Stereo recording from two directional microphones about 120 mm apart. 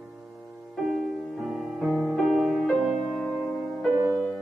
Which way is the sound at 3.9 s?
20° right (ahead or behind).